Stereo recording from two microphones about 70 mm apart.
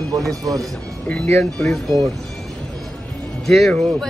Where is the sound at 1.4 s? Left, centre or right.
Centre.